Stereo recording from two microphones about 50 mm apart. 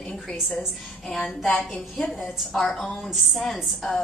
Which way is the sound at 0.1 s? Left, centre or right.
Centre.